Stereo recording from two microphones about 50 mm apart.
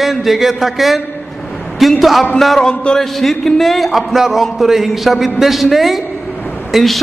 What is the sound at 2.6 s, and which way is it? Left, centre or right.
Speech, centre.